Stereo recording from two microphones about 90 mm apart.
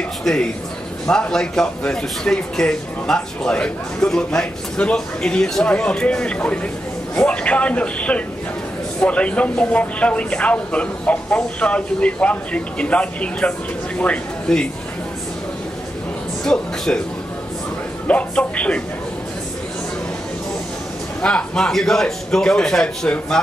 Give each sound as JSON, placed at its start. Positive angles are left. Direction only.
{"t": 0.2, "sound": "a man's voice", "side_deg": 5}
{"t": 16.4, "sound": "a man's voice", "side_deg": 10}
{"t": 18.0, "sound": "a man's voice", "side_deg": 15}
{"t": 21.2, "sound": "a man's voice", "side_deg": 10}